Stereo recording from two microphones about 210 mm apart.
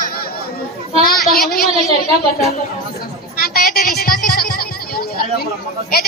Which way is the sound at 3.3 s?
45° left (ahead or behind).